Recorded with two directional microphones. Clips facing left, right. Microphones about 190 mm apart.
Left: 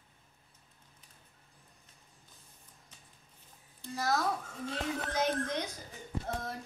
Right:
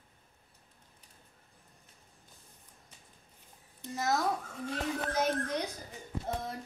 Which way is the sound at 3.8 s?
20° right (ahead or behind).